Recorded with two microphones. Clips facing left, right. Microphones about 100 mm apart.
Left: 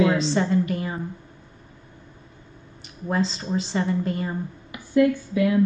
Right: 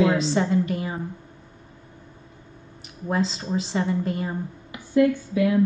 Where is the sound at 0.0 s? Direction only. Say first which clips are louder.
Even; centre (ahead or behind).